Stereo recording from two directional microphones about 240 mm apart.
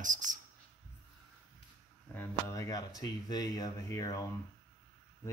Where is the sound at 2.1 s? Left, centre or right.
Centre.